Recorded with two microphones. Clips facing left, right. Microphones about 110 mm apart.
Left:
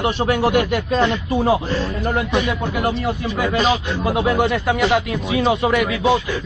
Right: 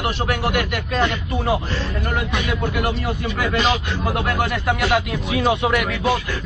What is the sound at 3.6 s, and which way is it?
Speech, centre (ahead or behind).